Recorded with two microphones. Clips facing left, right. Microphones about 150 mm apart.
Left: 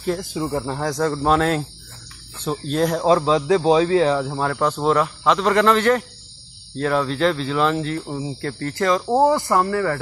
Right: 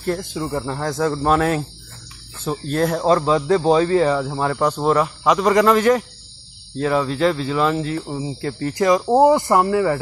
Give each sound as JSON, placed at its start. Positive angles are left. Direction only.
{"t": 0.0, "sound": "speech", "side_deg": 0}